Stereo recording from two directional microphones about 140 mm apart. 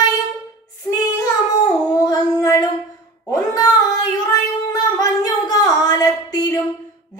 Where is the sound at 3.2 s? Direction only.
20° left (ahead or behind).